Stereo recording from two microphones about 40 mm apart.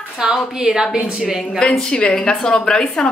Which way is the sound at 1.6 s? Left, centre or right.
Centre.